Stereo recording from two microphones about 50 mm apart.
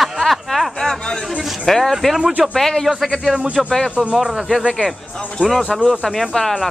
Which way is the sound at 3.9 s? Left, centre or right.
Right.